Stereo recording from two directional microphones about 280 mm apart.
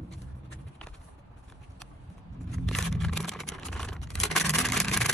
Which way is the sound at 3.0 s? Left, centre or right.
Centre.